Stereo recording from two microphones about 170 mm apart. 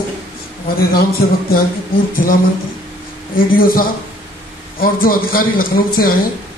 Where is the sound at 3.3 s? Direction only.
60° left (ahead or behind).